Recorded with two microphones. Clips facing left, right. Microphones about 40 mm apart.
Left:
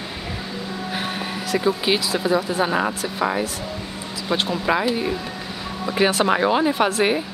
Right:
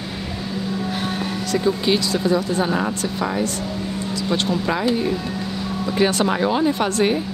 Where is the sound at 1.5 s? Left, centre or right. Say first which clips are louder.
Right 1 dB; centre.